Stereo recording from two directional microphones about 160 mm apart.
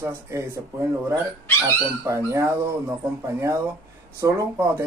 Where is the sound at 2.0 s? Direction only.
20° right (ahead or behind).